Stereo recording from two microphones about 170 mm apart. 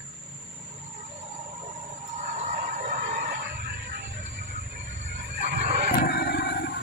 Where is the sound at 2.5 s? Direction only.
55° right (ahead or behind).